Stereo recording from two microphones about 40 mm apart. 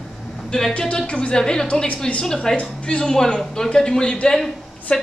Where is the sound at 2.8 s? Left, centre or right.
Left.